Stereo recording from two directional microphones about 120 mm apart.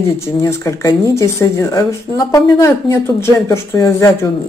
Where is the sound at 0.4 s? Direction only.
25° left (ahead or behind).